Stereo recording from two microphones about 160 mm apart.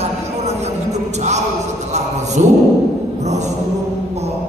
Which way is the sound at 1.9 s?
45° right (ahead or behind).